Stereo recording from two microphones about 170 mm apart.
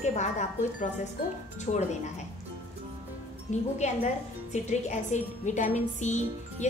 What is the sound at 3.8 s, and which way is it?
A woman's voice, 45° left (ahead or behind).